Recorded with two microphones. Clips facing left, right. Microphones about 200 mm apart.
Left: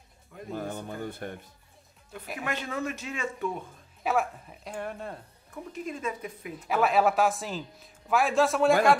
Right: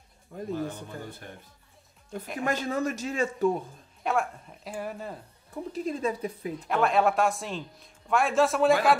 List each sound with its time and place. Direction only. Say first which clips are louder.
0.5 s speech: right 1 dB; 50° left (ahead or behind)
2.4 s speech: right 4 dB; 40° right (ahead or behind)
4.0 s a man's voice: even; 5° left (ahead or behind)
5.5 s speech: right 5 dB; 35° right (ahead or behind)
6.7 s a man's voice: even; 5° left (ahead or behind)